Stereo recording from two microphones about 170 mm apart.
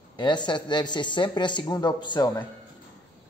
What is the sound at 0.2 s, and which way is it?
Speech, 25° left (ahead or behind).